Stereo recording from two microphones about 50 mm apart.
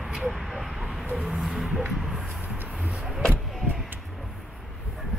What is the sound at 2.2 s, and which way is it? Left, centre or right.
Vehicle, right.